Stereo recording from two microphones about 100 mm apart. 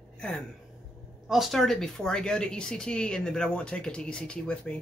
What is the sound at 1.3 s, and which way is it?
Speech, centre (ahead or behind).